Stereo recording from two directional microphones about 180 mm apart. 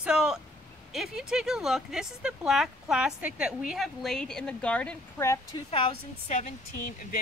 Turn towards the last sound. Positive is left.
turn(degrees=45)  # may be behind; listen again after turning